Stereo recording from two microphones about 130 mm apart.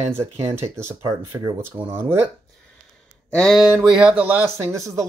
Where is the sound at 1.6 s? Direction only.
15° right (ahead or behind).